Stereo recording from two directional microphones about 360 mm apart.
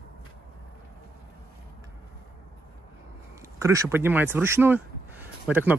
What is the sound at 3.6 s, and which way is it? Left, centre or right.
Speech, centre.